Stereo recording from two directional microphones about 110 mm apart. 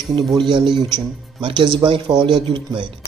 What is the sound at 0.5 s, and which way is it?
A man's voice, 45° right (ahead or behind).